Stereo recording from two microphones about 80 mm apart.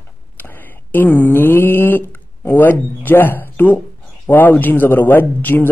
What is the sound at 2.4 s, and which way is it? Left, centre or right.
Speech, left.